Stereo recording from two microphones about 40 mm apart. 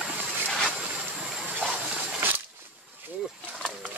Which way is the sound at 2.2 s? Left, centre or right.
Right.